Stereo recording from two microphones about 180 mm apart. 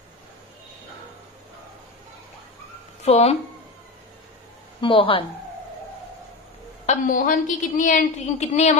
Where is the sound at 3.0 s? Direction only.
35° left (ahead or behind).